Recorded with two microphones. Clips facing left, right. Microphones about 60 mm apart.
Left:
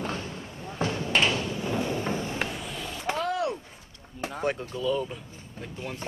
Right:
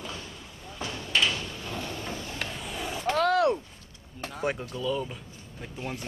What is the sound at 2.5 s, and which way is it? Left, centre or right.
Vehicle, centre.